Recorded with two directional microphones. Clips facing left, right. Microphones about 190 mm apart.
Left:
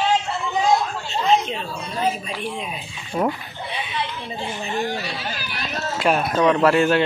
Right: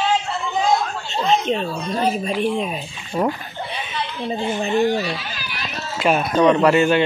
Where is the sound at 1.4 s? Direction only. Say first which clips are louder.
Right 7 dB; 40° right (ahead or behind).